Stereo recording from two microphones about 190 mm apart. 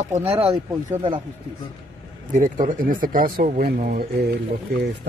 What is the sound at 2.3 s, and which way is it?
Speech, 40° right (ahead or behind).